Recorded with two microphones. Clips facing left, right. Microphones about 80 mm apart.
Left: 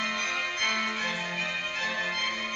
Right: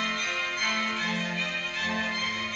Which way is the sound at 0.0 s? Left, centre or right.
Centre.